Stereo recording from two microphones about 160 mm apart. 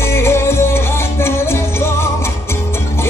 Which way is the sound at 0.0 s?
15° left (ahead or behind).